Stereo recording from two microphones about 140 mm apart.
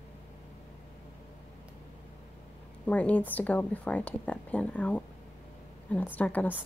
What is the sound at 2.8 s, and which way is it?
Speech, 10° left (ahead or behind).